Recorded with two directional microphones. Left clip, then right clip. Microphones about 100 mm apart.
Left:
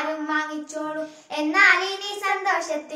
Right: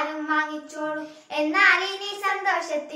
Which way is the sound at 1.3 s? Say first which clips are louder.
Left 1 dB; 30° left (ahead or behind).